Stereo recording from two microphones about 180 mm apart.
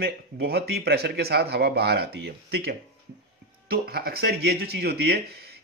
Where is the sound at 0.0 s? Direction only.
60° right (ahead or behind).